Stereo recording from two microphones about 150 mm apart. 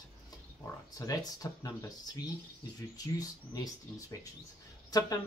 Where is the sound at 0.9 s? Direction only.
25° left (ahead or behind).